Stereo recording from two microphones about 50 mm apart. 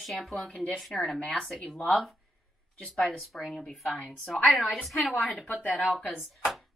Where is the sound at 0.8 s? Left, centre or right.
Centre.